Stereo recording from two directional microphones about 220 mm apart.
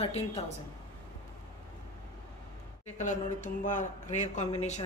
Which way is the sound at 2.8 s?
35° left (ahead or behind).